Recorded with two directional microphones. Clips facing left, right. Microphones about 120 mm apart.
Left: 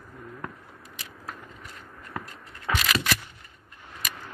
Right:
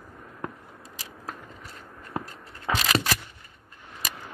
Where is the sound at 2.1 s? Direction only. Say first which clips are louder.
Right 4 dB; 30° right (ahead or behind).